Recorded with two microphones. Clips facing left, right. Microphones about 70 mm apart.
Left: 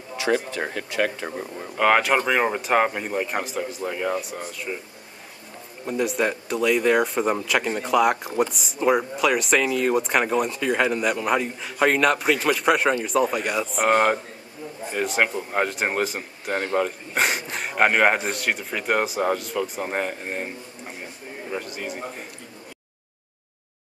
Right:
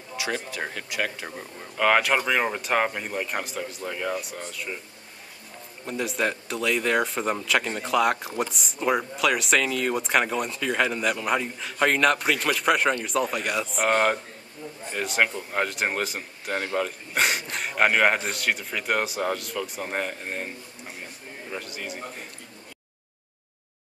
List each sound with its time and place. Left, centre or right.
1.0 s speech: left
1.8 s speech: centre
5.9 s speech: centre